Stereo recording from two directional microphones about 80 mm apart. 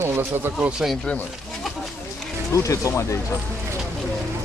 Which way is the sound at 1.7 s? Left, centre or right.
Centre.